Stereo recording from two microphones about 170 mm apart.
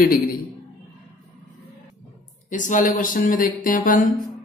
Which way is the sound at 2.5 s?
50° left (ahead or behind).